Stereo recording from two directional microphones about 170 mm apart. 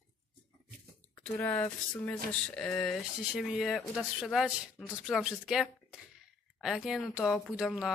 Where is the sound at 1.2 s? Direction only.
10° left (ahead or behind).